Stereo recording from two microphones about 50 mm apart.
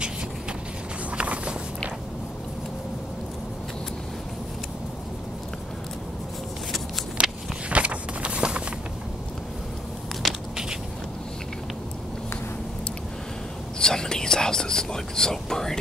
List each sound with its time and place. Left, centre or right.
1.1 s walk: right
7.2 s biting: right
7.7 s vehicle: right
10.2 s crushing: centre
13.7 s whispering: centre